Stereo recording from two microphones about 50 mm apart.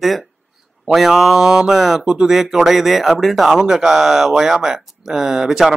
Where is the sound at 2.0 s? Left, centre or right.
Centre.